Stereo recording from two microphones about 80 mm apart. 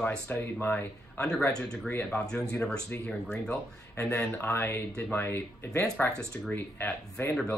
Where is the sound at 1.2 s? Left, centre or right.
Centre.